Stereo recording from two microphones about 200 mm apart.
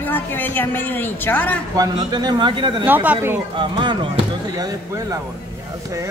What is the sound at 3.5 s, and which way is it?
Speech, 25° right (ahead or behind).